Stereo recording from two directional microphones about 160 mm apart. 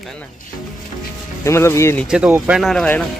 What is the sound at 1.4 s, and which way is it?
Speech, 15° left (ahead or behind).